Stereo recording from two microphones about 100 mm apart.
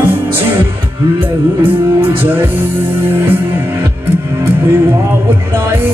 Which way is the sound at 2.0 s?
20° right (ahead or behind).